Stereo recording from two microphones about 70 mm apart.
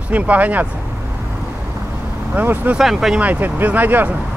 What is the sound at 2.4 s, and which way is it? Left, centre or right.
Speech, right.